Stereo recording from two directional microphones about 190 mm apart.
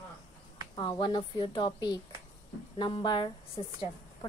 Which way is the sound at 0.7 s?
25° left (ahead or behind).